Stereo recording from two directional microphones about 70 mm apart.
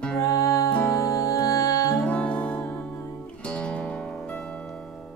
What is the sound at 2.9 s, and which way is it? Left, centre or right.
Music, left.